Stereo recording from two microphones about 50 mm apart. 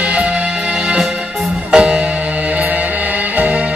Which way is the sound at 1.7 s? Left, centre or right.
Right.